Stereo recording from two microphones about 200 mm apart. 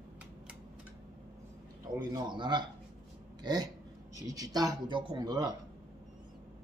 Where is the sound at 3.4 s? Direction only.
20° right (ahead or behind).